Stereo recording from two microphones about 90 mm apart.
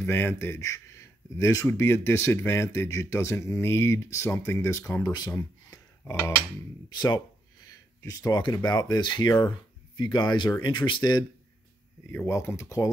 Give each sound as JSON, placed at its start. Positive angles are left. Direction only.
{"t": 0.0, "sound": "speech", "side_deg": 25}
{"t": 5.7, "sound": "a sound", "side_deg": 35}
{"t": 6.9, "sound": "speech", "side_deg": 50}
{"t": 7.7, "sound": "a sound", "side_deg": 40}
{"t": 8.5, "sound": "speech", "side_deg": 45}
{"t": 9.9, "sound": "speech", "side_deg": 60}
{"t": 12.3, "sound": "speech", "side_deg": 35}